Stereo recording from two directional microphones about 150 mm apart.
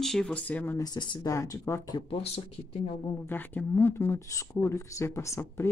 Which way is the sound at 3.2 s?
10° left (ahead or behind).